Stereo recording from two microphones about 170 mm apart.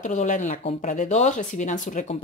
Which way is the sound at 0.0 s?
45° left (ahead or behind).